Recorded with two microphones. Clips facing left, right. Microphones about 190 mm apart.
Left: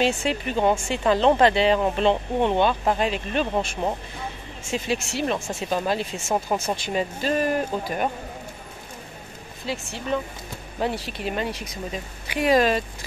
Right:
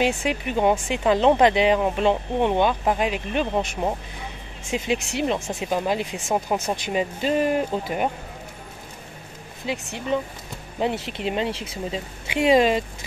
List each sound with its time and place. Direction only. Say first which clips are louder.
0.0 s speech: even; 15° right (ahead or behind)
6.2 s speech: even; 5° right (ahead or behind)
6.8 s speech: right 1 dB; 15° right (ahead or behind)
9.7 s speech: right 2 dB; 20° right (ahead or behind)